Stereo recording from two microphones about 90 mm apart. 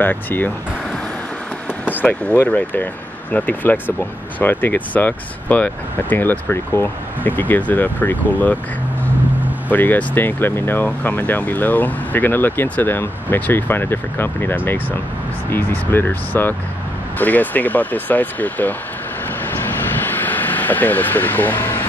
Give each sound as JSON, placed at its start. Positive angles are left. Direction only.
{"t": 0.0, "sound": "speech", "side_deg": 20}
{"t": 1.9, "sound": "speech", "side_deg": 20}
{"t": 9.7, "sound": "speech", "side_deg": 20}
{"t": 20.0, "sound": "vehicle", "side_deg": 20}